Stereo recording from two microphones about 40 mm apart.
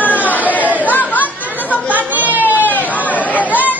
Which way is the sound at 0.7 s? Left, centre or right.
Left.